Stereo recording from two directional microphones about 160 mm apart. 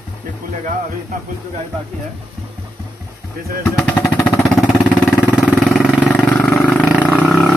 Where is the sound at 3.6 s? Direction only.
15° left (ahead or behind).